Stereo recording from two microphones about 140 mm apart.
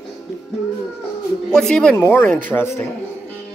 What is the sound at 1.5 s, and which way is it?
A man's voice, 5° left (ahead or behind).